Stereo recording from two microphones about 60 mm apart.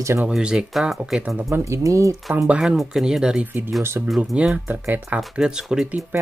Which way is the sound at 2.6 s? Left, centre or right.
Centre.